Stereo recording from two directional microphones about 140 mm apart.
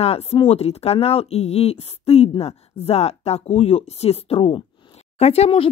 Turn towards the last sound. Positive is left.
turn(degrees=45)  # may be behind; listen again after turning